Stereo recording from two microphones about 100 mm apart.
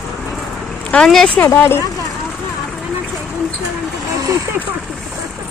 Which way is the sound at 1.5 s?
25° left (ahead or behind).